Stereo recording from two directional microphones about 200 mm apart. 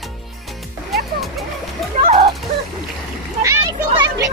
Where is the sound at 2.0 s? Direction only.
45° right (ahead or behind).